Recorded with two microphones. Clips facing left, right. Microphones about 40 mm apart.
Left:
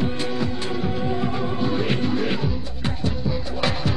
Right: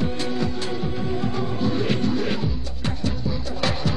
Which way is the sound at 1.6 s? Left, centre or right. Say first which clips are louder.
Right 1 dB; centre.